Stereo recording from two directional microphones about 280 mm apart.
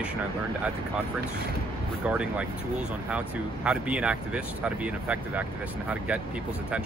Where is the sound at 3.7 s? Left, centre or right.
Centre.